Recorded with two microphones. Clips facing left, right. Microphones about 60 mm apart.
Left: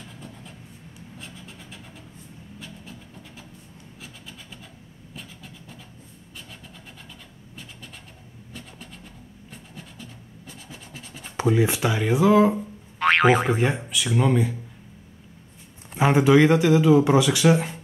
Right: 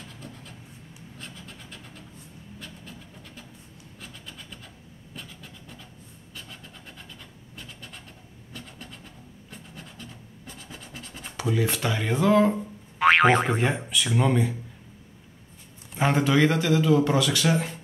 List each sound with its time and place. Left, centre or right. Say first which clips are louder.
1.1 s train: even; centre
2.6 s vehicle: left 1 dB; centre
4.0 s wood: right 1 dB; centre
5.1 s vehicle: left 1 dB; centre
10.7 s scratch: even; centre
11.3 s a sound: left 6 dB; left
11.6 s a man's voice: left 4 dB; centre
16.0 s a man's voice: left 5 dB; centre